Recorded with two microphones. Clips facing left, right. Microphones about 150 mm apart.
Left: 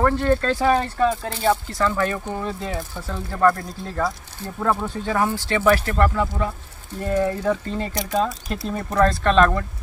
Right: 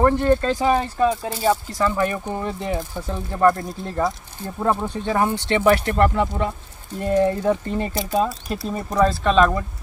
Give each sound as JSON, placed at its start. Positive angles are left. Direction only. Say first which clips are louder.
{"t": 0.0, "sound": "speech", "louder": "right 2 dB", "side_deg": -15}
{"t": 7.9, "sound": "speech", "louder": "even", "side_deg": -5}